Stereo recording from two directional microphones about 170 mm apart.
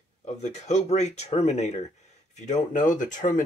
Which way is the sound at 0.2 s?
40° left (ahead or behind).